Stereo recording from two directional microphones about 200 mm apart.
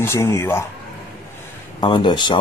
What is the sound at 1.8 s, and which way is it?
Speech, 25° left (ahead or behind).